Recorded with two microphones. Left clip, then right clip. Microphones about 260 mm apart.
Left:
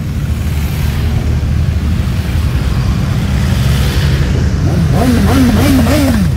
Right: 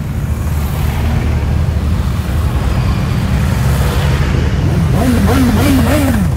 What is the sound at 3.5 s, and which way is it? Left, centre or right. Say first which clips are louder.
Vehicle: left 1 dB; centre.